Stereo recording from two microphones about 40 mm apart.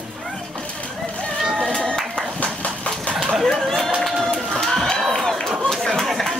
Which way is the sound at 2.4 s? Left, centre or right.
Left.